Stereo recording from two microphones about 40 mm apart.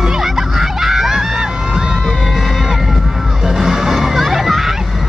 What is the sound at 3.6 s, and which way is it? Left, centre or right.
Crowd, centre.